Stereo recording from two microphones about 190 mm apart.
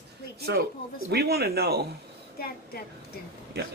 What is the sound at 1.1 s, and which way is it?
Speech, 55° right (ahead or behind).